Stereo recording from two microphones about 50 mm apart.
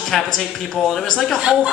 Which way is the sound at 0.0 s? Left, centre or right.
Centre.